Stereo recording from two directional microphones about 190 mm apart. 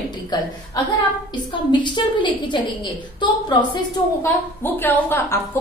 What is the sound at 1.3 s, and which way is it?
A woman's voice, 25° left (ahead or behind).